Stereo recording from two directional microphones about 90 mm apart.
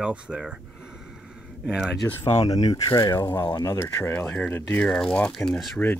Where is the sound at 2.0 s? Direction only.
30° left (ahead or behind).